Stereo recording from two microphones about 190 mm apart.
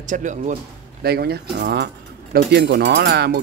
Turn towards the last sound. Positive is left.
turn(degrees=-60)  # may be behind; listen again after turning